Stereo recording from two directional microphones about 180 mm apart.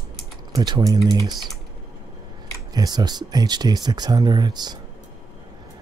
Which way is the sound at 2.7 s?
20° right (ahead or behind).